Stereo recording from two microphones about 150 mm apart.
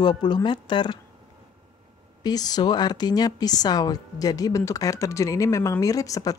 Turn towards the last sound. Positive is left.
turn(degrees=25)  # may be behind; listen again after turning